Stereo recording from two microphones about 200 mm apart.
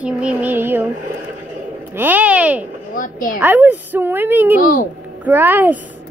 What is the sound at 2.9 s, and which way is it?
Speech, 40° left (ahead or behind).